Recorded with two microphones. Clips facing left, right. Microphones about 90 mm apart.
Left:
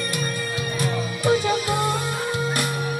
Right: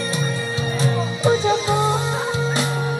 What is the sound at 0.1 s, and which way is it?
Music, 25° right (ahead or behind).